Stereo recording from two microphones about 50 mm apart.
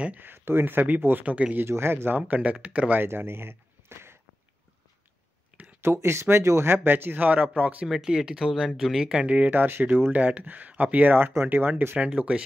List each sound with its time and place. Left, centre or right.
0.2 s speech: right
1.6 s speech: right
2.1 s speech: right
3.0 s speech: right
5.5 s a sound: centre
5.9 s speech: right
6.6 s speech: right
7.8 s speech: centre
9.3 s speech: right
12.0 s speech: right